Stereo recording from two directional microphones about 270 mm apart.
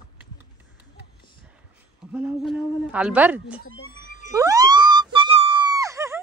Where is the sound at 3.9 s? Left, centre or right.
Centre.